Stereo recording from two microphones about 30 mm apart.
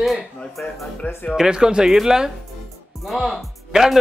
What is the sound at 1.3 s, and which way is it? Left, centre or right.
Speech, right.